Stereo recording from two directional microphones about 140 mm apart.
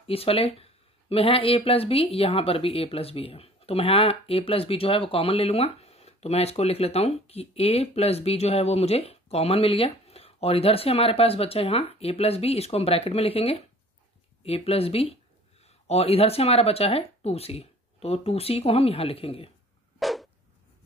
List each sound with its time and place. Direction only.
0.0 s speech: 45° left (ahead or behind)
20.0 s dog: centre (ahead or behind)